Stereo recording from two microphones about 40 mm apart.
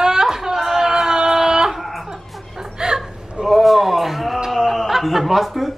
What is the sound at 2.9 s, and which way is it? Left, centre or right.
Speech, centre.